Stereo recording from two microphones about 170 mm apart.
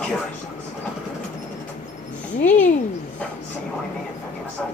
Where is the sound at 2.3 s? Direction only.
50° left (ahead or behind).